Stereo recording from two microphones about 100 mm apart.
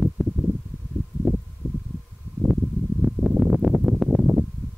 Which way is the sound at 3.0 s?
5° right (ahead or behind).